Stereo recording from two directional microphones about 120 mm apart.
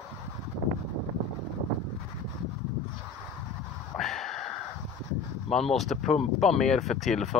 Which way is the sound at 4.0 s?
Centre (ahead or behind).